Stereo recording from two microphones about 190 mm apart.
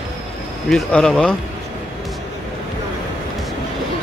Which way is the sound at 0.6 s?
5° left (ahead or behind).